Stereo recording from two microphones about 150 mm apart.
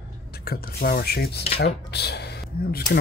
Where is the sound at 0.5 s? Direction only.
90° left.